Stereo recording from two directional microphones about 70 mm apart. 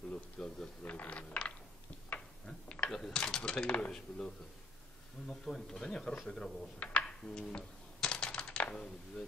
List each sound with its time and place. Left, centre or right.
0.1 s a sound: centre
0.8 s mechanisms: left
2.0 s tick-tock: centre
3.0 s a sound: centre
5.3 s speech: centre
6.8 s typing: centre